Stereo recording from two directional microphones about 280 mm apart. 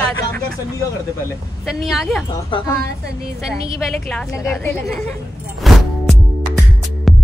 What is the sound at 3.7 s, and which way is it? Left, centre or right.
A woman's voice, centre.